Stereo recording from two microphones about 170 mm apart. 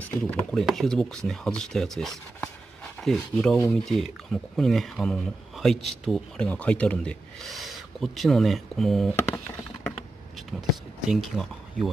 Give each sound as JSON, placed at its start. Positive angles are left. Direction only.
{"t": 0.2, "sound": "speech", "side_deg": 5}
{"t": 2.4, "sound": "a sound", "side_deg": 5}
{"t": 3.7, "sound": "speech", "side_deg": 0}
{"t": 9.1, "sound": "speech", "side_deg": 15}
{"t": 11.1, "sound": "speech", "side_deg": 0}